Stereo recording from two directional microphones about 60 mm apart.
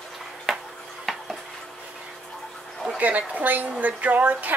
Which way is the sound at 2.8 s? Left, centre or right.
Right.